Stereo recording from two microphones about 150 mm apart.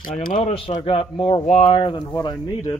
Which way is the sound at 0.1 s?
65° left (ahead or behind).